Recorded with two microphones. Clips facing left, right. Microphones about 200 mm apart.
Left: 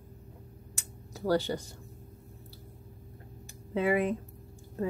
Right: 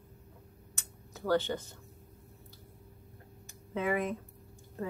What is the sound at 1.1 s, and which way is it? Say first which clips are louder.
Speech: left 2 dB; 40° left (ahead or behind).